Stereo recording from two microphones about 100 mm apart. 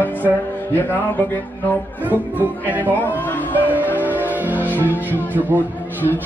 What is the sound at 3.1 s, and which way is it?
Speech, 20° left (ahead or behind).